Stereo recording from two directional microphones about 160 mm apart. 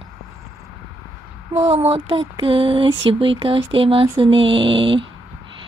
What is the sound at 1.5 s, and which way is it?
Speech, 40° right (ahead or behind).